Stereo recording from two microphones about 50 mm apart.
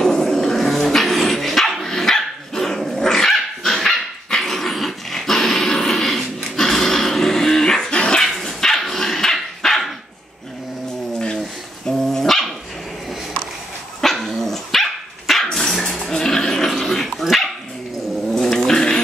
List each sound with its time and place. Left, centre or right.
0.0 s dog: centre
8.2 s dog: centre
11.1 s a sound: centre
11.9 s dog: centre
14.0 s dog: centre
18.3 s cat: centre